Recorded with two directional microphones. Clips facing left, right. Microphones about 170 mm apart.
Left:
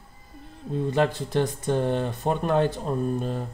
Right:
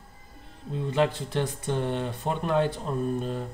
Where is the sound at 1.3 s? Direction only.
45° left (ahead or behind).